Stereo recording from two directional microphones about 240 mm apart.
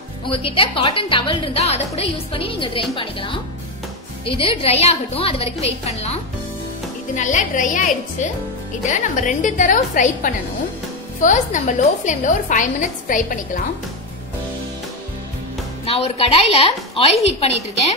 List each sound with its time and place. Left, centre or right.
0.3 s a woman's voice: left
15.8 s a woman's voice: left